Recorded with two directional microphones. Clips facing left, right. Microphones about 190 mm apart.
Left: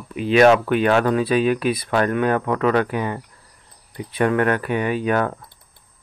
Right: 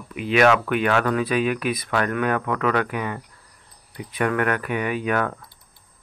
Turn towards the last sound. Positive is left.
turn(degrees=30)  # may be behind; listen again after turning